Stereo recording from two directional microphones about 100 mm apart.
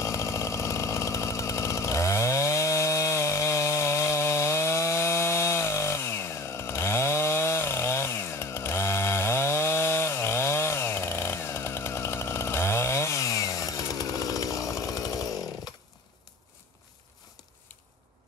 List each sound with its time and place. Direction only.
0.0 s chainsaw: 30° left (ahead or behind)